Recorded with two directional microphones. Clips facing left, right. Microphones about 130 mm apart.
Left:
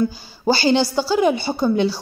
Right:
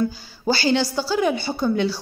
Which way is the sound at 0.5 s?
20° left (ahead or behind).